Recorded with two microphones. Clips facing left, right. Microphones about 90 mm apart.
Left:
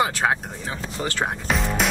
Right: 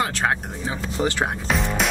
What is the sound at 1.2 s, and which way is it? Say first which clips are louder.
Speech: right 1 dB; centre (ahead or behind).